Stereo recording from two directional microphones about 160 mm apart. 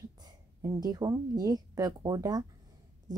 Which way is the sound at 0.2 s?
25° right (ahead or behind).